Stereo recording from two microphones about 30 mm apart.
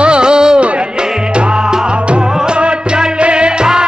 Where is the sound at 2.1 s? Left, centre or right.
Right.